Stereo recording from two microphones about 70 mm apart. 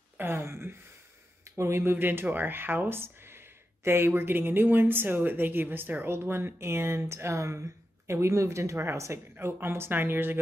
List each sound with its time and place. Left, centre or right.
0.2 s speech: right